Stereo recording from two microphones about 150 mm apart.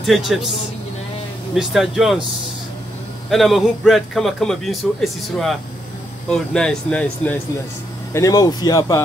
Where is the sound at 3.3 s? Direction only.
Centre (ahead or behind).